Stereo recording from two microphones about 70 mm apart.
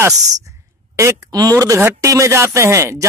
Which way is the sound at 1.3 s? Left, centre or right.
Right.